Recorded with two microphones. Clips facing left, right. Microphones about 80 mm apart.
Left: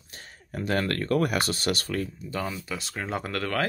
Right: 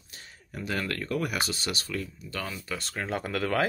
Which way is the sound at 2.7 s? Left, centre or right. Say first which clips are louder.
Left 1 dB; centre.